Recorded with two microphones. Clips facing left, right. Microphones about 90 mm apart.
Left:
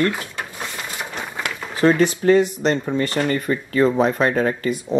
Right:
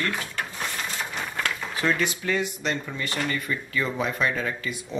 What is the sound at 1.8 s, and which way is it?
Speech, 35° left (ahead or behind).